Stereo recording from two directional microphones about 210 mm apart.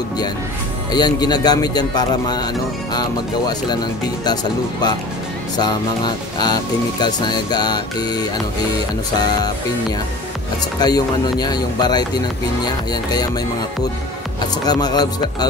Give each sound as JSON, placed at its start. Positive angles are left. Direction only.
{"t": 0.9, "sound": "a man's voice", "side_deg": 20}
{"t": 5.6, "sound": "a man's voice", "side_deg": 20}
{"t": 10.8, "sound": "a man's voice", "side_deg": 20}
{"t": 14.4, "sound": "a man's voice", "side_deg": 20}